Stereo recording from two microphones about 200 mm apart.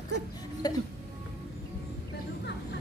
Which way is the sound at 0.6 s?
20° left (ahead or behind).